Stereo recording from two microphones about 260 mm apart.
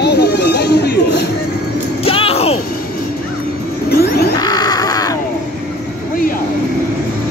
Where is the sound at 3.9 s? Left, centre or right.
Left.